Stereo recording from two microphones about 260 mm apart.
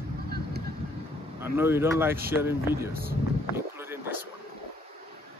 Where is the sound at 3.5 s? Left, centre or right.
Centre.